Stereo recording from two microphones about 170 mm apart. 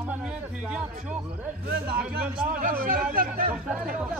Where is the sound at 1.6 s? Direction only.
60° right (ahead or behind).